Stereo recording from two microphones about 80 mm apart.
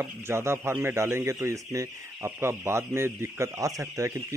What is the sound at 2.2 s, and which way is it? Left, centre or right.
A man's voice, right.